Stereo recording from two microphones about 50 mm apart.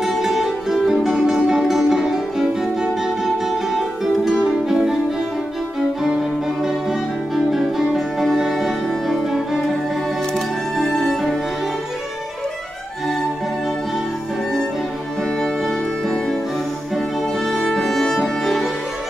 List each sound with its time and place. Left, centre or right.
0.0 s music: centre
1.3 s music: centre
6.0 s music: centre
10.8 s music: centre
17.5 s music: centre